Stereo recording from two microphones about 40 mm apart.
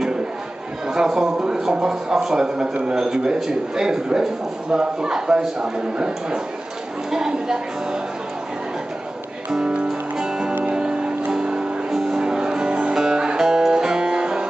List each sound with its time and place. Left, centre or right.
0.8 s a man's voice: centre
10.1 s music: centre